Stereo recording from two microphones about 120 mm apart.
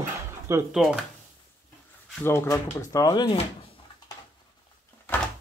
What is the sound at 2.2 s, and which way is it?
Speech, 20° left (ahead or behind).